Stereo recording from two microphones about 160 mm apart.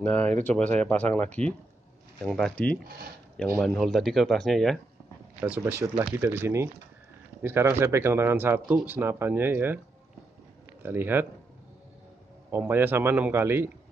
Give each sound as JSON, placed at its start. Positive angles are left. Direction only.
{"t": 0.0, "sound": "speech", "side_deg": 10}
{"t": 5.6, "sound": "speech", "side_deg": -15}
{"t": 10.8, "sound": "speech", "side_deg": -15}
{"t": 12.4, "sound": "speech", "side_deg": -15}